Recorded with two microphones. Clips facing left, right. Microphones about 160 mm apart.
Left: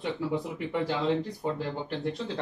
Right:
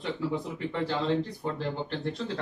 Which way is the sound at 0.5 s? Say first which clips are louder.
Left 1 dB; 15° left (ahead or behind).